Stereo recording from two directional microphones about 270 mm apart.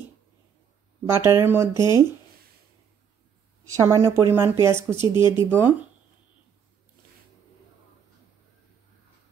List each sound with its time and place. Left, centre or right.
1.2 s speech: centre
3.7 s speech: centre
4.9 s speech: centre
5.4 s speech: centre